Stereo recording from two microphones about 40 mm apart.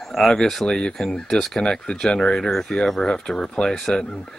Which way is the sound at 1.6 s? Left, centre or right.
Left.